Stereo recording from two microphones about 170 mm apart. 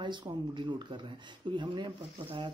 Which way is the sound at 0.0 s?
25° right (ahead or behind).